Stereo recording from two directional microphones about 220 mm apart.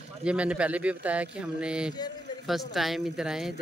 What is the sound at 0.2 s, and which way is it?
Speech, 5° right (ahead or behind).